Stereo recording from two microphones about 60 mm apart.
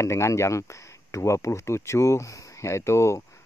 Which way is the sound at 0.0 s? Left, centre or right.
Left.